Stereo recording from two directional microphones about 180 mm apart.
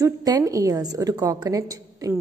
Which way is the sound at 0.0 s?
20° right (ahead or behind).